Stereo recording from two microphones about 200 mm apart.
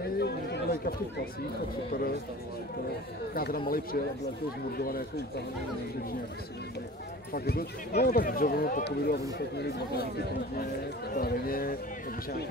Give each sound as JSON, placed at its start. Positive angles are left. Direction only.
{"t": 0.0, "sound": "chatter", "side_deg": 55}
{"t": 3.3, "sound": "speech", "side_deg": 50}
{"t": 7.3, "sound": "speech", "side_deg": 50}